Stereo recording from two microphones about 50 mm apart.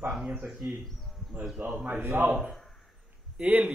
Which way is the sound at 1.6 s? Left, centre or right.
Right.